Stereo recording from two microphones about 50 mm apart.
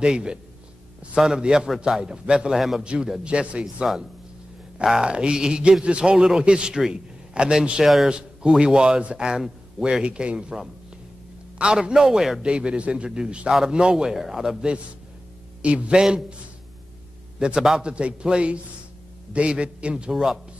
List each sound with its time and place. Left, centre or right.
0.0 s a man's voice: centre
7.8 s a man's voice: centre
8.1 s a man's voice: centre
10.0 s a man's voice: right
13.5 s a man's voice: centre
13.7 s a man's voice: centre
15.6 s a man's voice: right
16.0 s a man's voice: centre
17.6 s a man's voice: centre
17.8 s a man's voice: right
20.1 s a man's voice: centre